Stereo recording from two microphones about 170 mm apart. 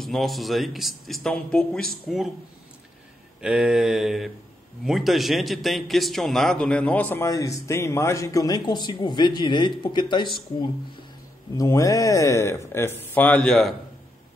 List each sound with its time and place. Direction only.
0.0 s a man's voice: centre (ahead or behind)
3.3 s a man's voice: 5° right (ahead or behind); by 10.2 s 25° left (ahead or behind)
11.5 s speech: 20° left (ahead or behind); by 13.7 s 5° left (ahead or behind)